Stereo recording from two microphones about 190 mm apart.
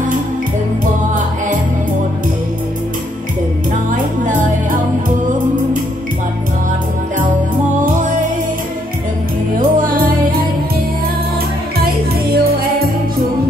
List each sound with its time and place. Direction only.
3.9 s music: 45° right (ahead or behind)
9.6 s music: 50° right (ahead or behind)
11.8 s music: 50° right (ahead or behind)